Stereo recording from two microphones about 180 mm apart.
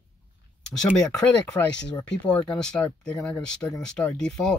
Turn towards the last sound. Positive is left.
turn(degrees=5)  # may be behind; listen again after turning